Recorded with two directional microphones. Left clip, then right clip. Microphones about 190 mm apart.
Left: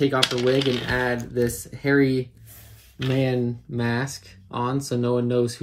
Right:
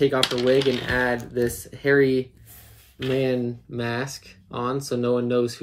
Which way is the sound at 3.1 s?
35° left (ahead or behind).